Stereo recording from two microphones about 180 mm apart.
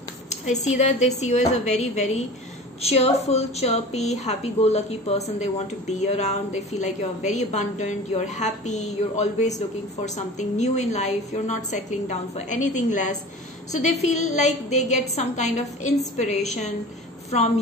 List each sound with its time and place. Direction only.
0.3 s a woman's voice: 40° left (ahead or behind)